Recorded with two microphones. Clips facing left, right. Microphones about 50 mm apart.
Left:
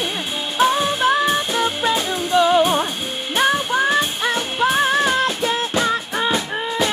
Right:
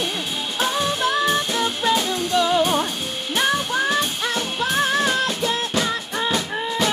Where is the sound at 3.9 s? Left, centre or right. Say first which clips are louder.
Left 3 dB; left.